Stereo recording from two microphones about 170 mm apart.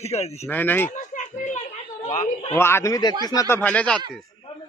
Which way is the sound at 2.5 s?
15° left (ahead or behind).